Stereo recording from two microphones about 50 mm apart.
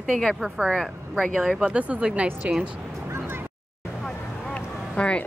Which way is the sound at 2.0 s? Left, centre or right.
Right.